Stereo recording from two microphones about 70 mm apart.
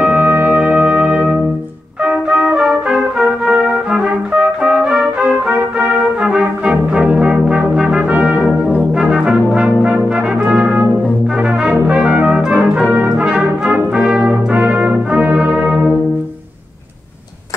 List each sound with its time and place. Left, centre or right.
0.0 s music: right
2.0 s trumpet: centre
5.5 s trumpet: right
6.2 s brass instrument: centre